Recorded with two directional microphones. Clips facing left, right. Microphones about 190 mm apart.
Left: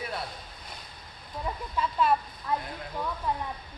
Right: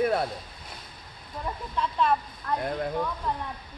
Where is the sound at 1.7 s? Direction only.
5° left (ahead or behind).